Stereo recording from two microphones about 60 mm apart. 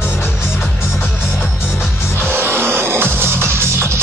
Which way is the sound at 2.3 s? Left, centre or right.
Right.